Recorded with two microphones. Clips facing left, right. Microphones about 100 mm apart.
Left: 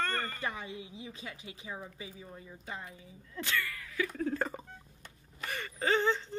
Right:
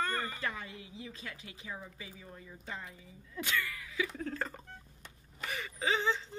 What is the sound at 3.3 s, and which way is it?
Speech, 20° right (ahead or behind).